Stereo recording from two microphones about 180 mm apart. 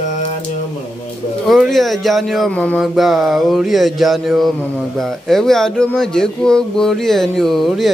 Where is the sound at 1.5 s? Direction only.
Centre (ahead or behind).